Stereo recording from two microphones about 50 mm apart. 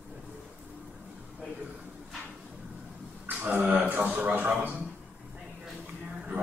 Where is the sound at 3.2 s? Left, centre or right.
Right.